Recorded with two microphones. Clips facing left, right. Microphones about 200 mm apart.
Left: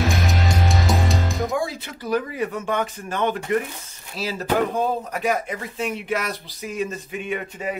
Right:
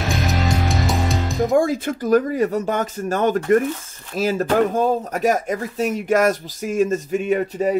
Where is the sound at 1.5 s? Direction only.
50° right (ahead or behind).